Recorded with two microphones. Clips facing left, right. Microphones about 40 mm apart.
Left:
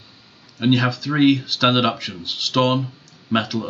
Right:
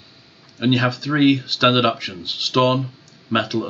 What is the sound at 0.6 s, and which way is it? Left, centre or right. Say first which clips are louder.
Speech: even; centre.